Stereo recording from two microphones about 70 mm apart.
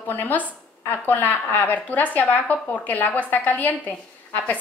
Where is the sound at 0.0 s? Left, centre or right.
Left.